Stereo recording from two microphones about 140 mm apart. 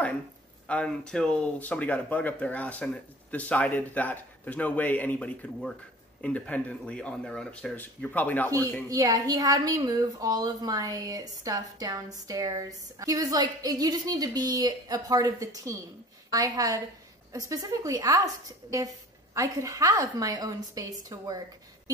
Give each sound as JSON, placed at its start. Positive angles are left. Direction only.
{"t": 0.7, "sound": "speech", "side_deg": 5}
{"t": 8.5, "sound": "a woman's voice", "side_deg": -25}